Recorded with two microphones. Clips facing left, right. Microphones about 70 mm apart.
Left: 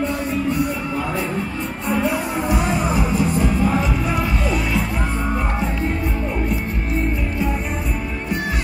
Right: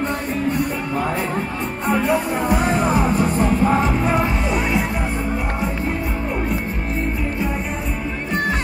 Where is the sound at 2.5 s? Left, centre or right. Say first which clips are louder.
Right 3 dB; right.